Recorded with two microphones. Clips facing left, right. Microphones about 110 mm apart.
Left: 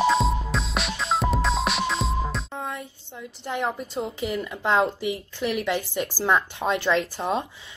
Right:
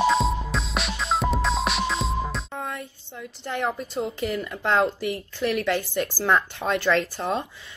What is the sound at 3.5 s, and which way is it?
A woman's voice, 20° left (ahead or behind).